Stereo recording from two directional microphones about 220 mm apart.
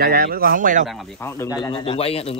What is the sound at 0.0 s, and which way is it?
Speech, 40° right (ahead or behind).